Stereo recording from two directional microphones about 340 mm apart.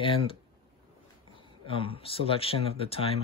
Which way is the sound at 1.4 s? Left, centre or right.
Centre.